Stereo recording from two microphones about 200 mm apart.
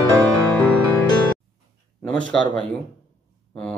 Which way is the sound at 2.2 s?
5° left (ahead or behind).